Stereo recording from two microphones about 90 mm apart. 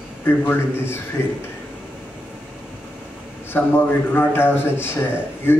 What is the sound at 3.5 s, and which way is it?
A man's voice, 15° left (ahead or behind).